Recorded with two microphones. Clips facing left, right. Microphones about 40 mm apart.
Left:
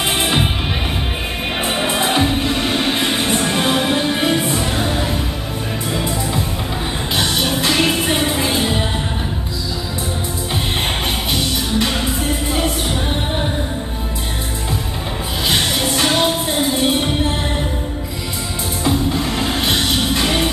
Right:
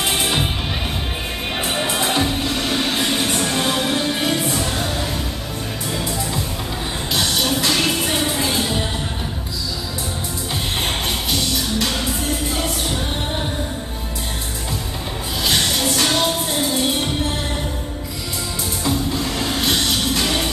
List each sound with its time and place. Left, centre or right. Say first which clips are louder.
0.2 s music: left 3 dB; centre
1.6 s music: left 3 dB; centre
11.3 s music: left 2 dB; centre
15.4 s music: left 1 dB; centre
18.9 s music: left 4 dB; centre